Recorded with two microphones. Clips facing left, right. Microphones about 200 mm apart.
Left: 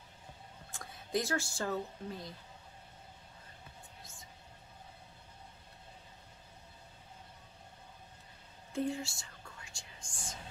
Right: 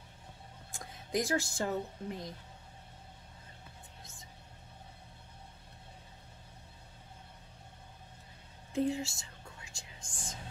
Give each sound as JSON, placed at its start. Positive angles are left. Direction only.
{"t": 0.7, "sound": "speech", "side_deg": -15}
{"t": 8.7, "sound": "whispering", "side_deg": -20}